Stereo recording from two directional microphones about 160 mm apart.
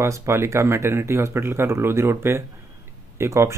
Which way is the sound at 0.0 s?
15° right (ahead or behind).